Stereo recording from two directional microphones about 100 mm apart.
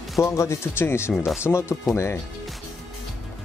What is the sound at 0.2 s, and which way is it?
Speech, 30° left (ahead or behind).